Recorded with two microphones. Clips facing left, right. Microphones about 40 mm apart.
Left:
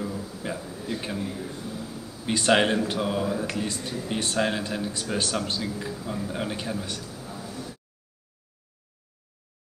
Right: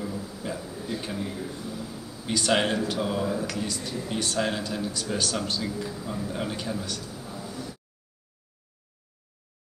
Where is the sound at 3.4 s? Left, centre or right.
Left.